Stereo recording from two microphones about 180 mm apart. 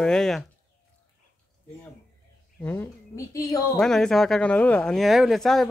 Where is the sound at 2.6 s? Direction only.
10° left (ahead or behind).